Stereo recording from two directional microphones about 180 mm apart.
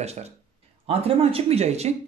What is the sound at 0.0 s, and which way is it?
Speech, 35° right (ahead or behind).